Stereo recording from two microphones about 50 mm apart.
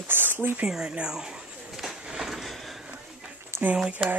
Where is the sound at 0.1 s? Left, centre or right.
Right.